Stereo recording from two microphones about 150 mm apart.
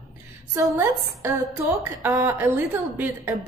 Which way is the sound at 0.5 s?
20° right (ahead or behind).